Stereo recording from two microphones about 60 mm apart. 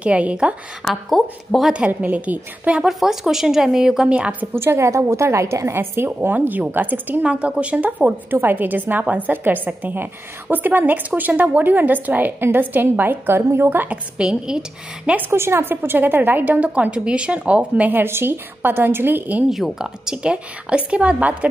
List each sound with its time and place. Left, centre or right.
0.0 s a woman's voice: right
0.8 s speech: centre
1.9 s a woman's voice: right
2.8 s speech: centre
4.1 s a woman's voice: right
4.6 s a woman's voice: right
6.0 s a woman's voice: right
7.2 s a woman's voice: centre
8.3 s a woman's voice: right
14.1 s speech: centre
15.0 s a woman's voice: right
15.3 s a woman's voice: right
17.9 s a woman's voice: right
19.5 s a woman's voice: centre; by 21.5 s right